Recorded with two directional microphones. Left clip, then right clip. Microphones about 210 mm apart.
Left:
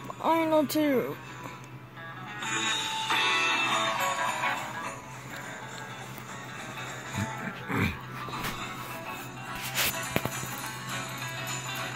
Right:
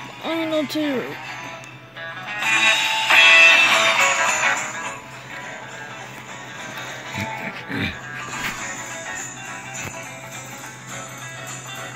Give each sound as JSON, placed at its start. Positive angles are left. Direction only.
{"t": 0.2, "sound": "speech", "side_deg": 10}
{"t": 2.2, "sound": "music", "side_deg": -35}
{"t": 7.2, "sound": "music", "side_deg": -10}